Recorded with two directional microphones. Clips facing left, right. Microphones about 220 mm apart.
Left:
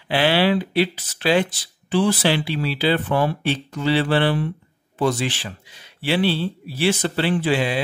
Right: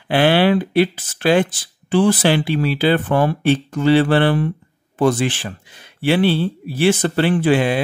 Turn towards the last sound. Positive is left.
turn(degrees=-50)  # may be behind; listen again after turning